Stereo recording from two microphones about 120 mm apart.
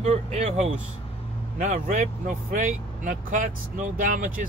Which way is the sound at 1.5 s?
80° right.